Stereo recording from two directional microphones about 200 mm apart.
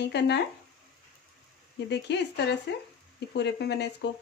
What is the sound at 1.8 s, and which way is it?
Speech, 60° left (ahead or behind).